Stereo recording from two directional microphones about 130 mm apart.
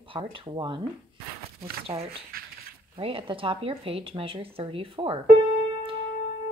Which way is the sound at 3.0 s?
45° right (ahead or behind).